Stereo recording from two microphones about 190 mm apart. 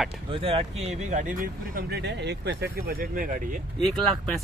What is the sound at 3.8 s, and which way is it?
Speech, 5° left (ahead or behind).